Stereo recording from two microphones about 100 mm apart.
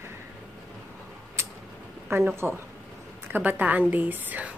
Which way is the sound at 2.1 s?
25° right (ahead or behind).